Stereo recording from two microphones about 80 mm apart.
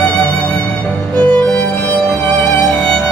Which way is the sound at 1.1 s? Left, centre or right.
Centre.